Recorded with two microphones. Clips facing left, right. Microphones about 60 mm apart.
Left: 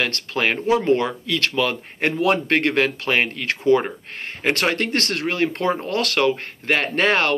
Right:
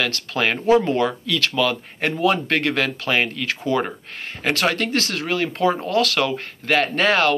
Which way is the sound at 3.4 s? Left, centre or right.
Left.